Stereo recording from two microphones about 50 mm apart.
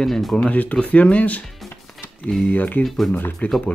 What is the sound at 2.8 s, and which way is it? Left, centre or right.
Speech, centre.